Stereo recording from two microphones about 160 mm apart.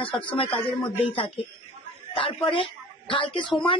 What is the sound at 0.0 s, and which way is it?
Speech, 35° left (ahead or behind).